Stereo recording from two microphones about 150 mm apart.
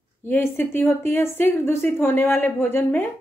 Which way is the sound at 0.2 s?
15° left (ahead or behind).